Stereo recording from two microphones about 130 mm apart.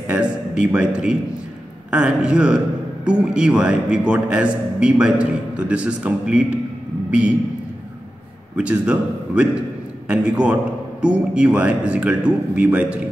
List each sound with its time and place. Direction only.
0.0 s a man's voice: 5° right (ahead or behind)
8.5 s a man's voice: 10° right (ahead or behind)